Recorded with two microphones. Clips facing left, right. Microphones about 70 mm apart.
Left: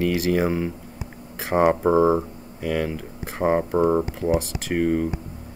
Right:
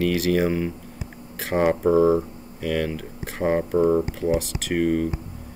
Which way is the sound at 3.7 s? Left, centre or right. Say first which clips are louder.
Even; left.